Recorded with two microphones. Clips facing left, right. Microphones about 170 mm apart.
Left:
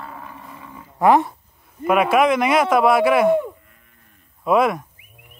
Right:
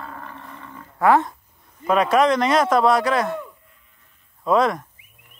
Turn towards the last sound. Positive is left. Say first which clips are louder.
# left 1 dB
turn(degrees=10)  # may be behind; listen again after turning